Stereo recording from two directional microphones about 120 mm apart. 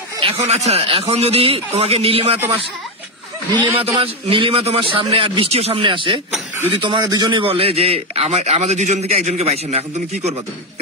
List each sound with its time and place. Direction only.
0.2 s a man's voice: 55° right (ahead or behind)
3.7 s a man's voice: 50° right (ahead or behind)
7.4 s a man's voice: 50° right (ahead or behind)